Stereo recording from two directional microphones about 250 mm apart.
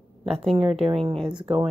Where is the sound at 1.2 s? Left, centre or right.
Centre.